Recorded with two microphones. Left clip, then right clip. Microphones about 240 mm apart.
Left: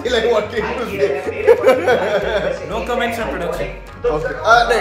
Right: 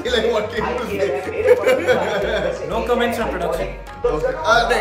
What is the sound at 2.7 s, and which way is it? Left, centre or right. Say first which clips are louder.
Speech: right 3 dB; centre.